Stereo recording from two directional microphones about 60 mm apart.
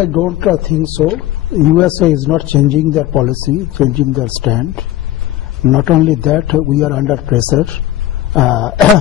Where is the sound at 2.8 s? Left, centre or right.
Centre.